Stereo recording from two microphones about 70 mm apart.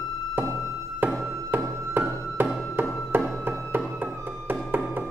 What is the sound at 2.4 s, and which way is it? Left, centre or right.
Music, right.